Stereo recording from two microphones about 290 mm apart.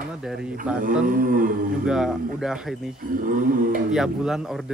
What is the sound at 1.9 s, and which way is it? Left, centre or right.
Speech, centre.